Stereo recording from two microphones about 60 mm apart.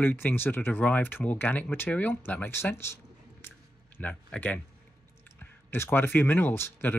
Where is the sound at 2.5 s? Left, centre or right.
Left.